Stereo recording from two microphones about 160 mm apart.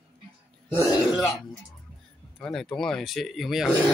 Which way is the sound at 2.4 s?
5° left (ahead or behind).